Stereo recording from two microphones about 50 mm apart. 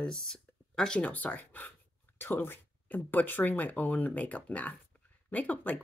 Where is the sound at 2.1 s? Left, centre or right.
Left.